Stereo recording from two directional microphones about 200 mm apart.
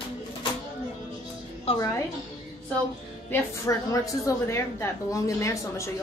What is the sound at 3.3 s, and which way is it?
A woman's voice, 15° left (ahead or behind).